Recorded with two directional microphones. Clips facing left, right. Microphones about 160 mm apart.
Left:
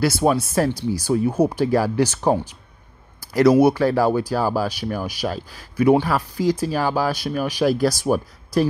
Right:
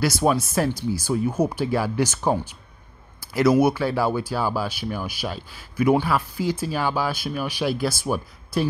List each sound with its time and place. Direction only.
0.0 s speech: 30° left (ahead or behind)